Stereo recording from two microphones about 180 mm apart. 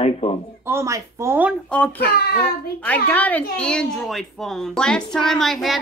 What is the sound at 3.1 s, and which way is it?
A child's voice, 10° left (ahead or behind).